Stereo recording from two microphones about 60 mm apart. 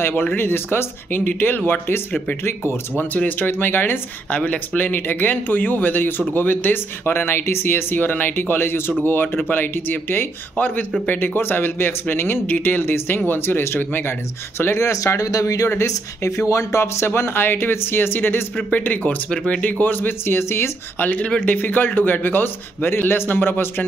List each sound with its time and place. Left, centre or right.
0.1 s speech: left
0.4 s speech: left
2.4 s speech: left
3.0 s speech: left
4.3 s speech: left
14.8 s speech: left
15.8 s speech: left; by 19.7 s centre
19.8 s speech: left
21.0 s speech: left